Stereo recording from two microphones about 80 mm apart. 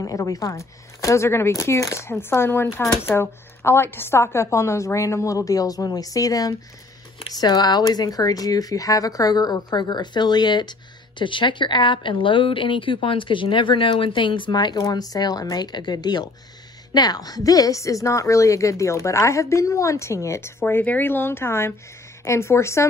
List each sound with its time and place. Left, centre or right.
0.0 s speech: left
7.2 s speech: left